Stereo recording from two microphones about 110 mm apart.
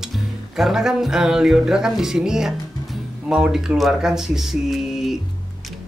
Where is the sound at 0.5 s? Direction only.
5° right (ahead or behind).